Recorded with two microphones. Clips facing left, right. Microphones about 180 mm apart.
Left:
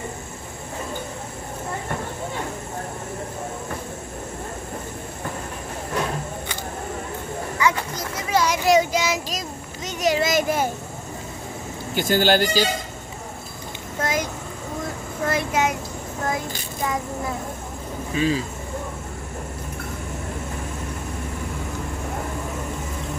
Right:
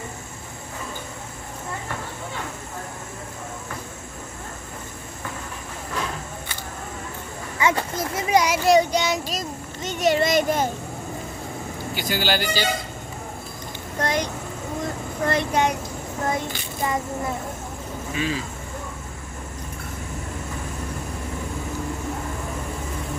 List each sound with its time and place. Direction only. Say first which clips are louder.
7.5 s children playing: right 1 dB; 25° right (ahead or behind)
8.6 s a child's voice: right 1 dB; centre (ahead or behind)
11.9 s speech: left 6 dB; 50° left (ahead or behind)
13.9 s vehicle: right 1 dB; 5° left (ahead or behind)
15.2 s speech: right 1 dB; 5° left (ahead or behind)
18.1 s speech: left 5 dB; 35° left (ahead or behind)